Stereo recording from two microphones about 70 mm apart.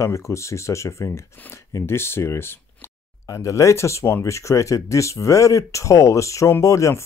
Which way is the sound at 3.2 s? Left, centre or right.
Left.